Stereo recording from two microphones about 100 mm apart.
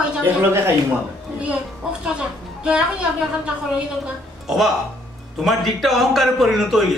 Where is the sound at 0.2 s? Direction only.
20° right (ahead or behind).